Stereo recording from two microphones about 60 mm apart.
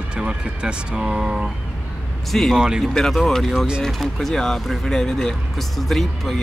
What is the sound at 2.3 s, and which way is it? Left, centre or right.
Speech, centre.